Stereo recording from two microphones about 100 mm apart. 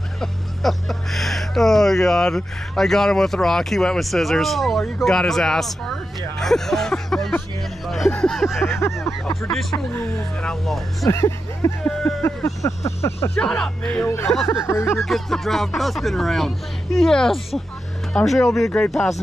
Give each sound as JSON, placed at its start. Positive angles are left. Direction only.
{"t": 0.2, "sound": "speech", "side_deg": 0}
{"t": 7.8, "sound": "a sound", "side_deg": 0}
{"t": 8.6, "sound": "a sound", "side_deg": 25}
{"t": 9.9, "sound": "speech", "side_deg": 10}
{"t": 11.1, "sound": "speech", "side_deg": 25}
{"t": 11.9, "sound": "a sound", "side_deg": 5}
{"t": 12.2, "sound": "speech", "side_deg": 25}
{"t": 13.4, "sound": "speech", "side_deg": 10}
{"t": 14.0, "sound": "speech", "side_deg": 25}
{"t": 15.0, "sound": "speech", "side_deg": 0}